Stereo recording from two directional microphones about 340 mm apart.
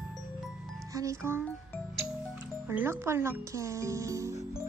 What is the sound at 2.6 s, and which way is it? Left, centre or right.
Speech, centre.